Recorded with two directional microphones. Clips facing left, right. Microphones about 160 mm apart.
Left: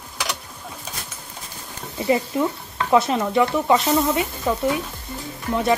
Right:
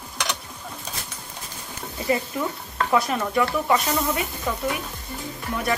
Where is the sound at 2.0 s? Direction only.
25° left (ahead or behind).